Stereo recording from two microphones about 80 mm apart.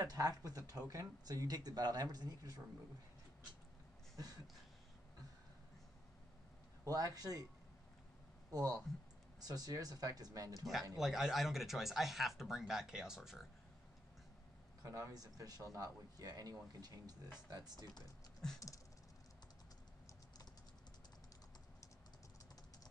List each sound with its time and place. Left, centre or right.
0.0 s speech: right
6.8 s speech: right
8.5 s speech: right
11.0 s speech: centre
14.8 s speech: right